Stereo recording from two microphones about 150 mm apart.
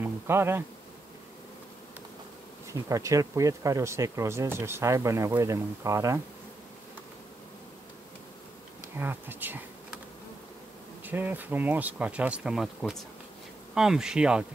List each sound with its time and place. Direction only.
0.0 s bee: 15° right (ahead or behind)
2.7 s speech: 20° right (ahead or behind)
8.9 s speech: 15° right (ahead or behind)
11.1 s speech: 10° right (ahead or behind)
13.7 s insect: 5° right (ahead or behind)